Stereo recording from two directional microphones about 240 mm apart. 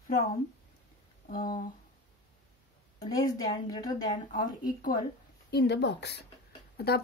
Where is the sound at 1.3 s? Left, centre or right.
Centre.